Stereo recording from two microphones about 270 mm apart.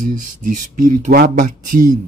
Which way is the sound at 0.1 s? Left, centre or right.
Right.